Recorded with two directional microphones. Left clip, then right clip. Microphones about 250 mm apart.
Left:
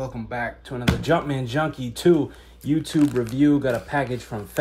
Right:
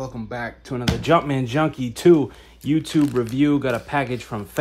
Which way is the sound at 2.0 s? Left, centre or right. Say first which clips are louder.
Right 4 dB; right.